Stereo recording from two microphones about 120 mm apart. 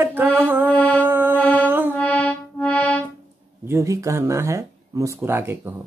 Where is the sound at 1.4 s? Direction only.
10° left (ahead or behind).